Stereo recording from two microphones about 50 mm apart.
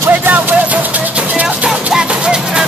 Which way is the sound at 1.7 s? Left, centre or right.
Centre.